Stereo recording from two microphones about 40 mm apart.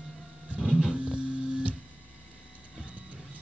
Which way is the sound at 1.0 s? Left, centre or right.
Right.